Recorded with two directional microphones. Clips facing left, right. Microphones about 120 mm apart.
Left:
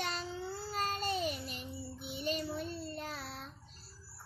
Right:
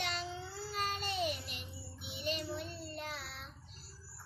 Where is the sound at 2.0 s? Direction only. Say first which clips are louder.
Left 2 dB; 45° left (ahead or behind).